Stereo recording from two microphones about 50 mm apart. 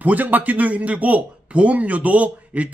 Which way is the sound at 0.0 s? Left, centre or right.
Right.